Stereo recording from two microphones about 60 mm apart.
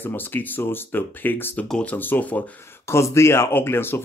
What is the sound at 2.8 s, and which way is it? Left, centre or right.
Speech, left.